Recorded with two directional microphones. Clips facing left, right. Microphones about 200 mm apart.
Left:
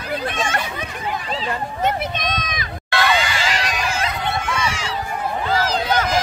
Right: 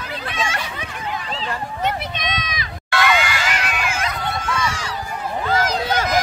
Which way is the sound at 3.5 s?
35° left (ahead or behind).